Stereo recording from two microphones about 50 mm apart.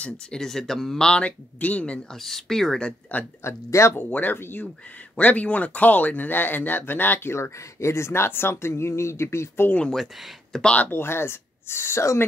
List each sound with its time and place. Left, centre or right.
0.4 s speech: centre
1.0 s speech: left
2.0 s speech: centre
3.1 s speech: left
3.4 s speech: left
4.1 s speech: left
5.1 s speech: left
7.3 s speech: left
10.5 s speech: centre
10.9 s speech: left